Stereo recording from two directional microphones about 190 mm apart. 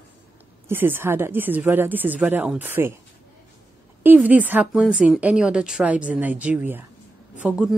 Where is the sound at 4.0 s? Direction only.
10° right (ahead or behind).